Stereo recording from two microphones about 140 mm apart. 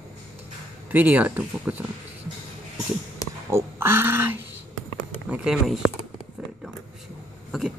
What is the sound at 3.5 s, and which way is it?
Speech, 15° right (ahead or behind).